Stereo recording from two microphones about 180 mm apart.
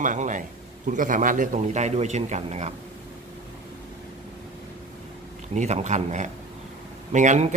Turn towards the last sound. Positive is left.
turn(degrees=-40)  # may be behind; listen again after turning